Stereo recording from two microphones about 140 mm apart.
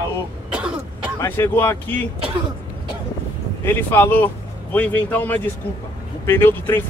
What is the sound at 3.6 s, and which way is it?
Speech, 15° left (ahead or behind).